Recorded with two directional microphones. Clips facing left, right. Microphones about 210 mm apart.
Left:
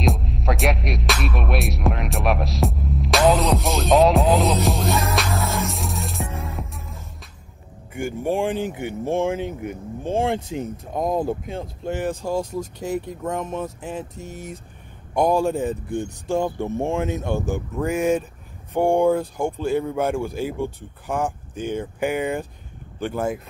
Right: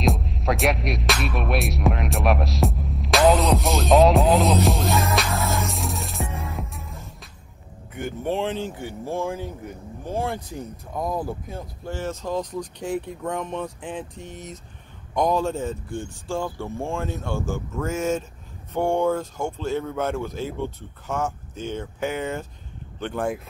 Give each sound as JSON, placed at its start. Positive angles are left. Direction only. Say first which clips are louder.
{"t": 0.0, "sound": "music", "louder": "even", "side_deg": 0}
{"t": 8.0, "sound": "speech", "louder": "left 3 dB", "side_deg": 10}
{"t": 12.7, "sound": "speech", "louder": "even", "side_deg": 5}